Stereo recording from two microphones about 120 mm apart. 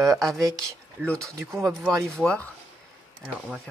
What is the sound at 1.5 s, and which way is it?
Speech, 25° right (ahead or behind).